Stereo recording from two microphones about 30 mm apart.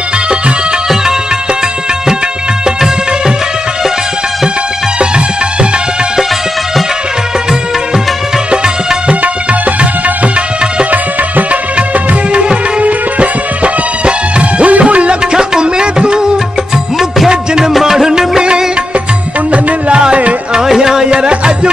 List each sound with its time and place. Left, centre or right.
9.2 s music: right
12.8 s music: right
15.3 s music: right
17.7 s music: centre
20.6 s music: centre; by 21.5 s right